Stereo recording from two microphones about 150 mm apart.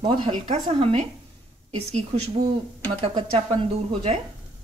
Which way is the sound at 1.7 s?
45° right (ahead or behind).